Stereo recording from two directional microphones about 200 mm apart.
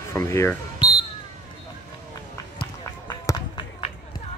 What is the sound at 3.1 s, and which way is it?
Run, 20° left (ahead or behind).